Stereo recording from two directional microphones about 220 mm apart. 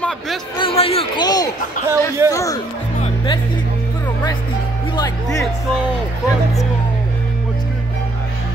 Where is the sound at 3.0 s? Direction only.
20° left (ahead or behind).